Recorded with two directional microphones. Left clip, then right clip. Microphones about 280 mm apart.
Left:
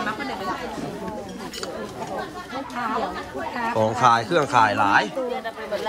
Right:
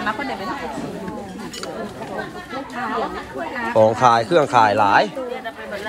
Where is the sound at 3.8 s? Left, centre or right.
Centre.